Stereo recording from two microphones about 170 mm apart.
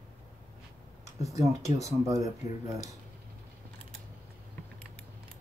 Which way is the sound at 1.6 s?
40° left (ahead or behind).